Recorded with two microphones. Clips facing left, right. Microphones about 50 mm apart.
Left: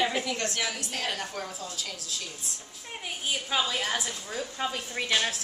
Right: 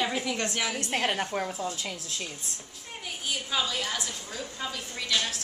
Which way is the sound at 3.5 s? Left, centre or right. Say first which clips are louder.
Left 2 dB; centre.